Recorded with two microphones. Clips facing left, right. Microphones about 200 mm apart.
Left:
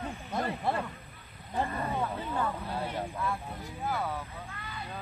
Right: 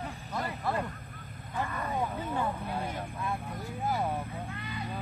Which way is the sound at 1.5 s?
30° left (ahead or behind).